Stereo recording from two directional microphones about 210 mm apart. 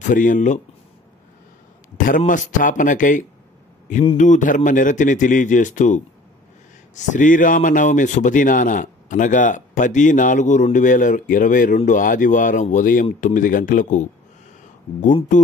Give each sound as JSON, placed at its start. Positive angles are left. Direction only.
{"t": 0.0, "sound": "a man's voice", "side_deg": 40}
{"t": 2.0, "sound": "a man's voice", "side_deg": 40}